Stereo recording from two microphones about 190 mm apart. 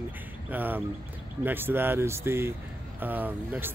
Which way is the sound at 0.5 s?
10° right (ahead or behind).